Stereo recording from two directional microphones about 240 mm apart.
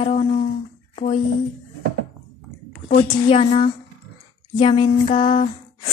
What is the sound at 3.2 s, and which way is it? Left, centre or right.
A woman's voice, left.